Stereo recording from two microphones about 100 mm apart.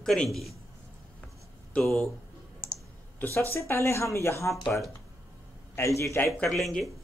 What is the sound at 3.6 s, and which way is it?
Speech, 25° left (ahead or behind).